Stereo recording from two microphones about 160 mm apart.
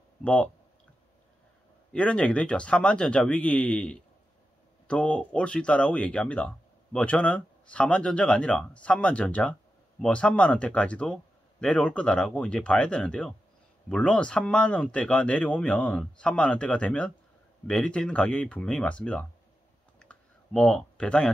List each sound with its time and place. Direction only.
0.2 s speech: 10° left (ahead or behind)
1.9 s speech: 5° left (ahead or behind)
20.0 s clicking: 5° left (ahead or behind)